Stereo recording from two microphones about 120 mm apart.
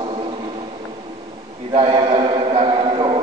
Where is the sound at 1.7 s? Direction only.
45° right (ahead or behind).